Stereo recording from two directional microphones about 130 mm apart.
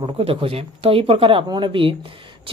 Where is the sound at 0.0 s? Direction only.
45° right (ahead or behind).